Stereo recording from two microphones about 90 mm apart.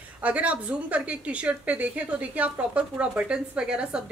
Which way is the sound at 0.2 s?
15° right (ahead or behind).